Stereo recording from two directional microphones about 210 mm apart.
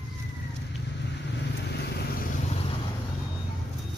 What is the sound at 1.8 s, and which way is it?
Vehicle, 50° left (ahead or behind).